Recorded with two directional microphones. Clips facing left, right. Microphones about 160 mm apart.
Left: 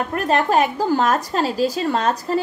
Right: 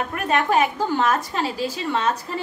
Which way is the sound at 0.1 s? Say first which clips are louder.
Left 3 dB; 35° left (ahead or behind).